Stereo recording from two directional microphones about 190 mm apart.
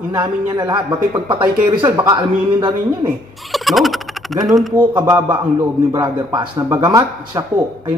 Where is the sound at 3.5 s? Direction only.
Centre (ahead or behind).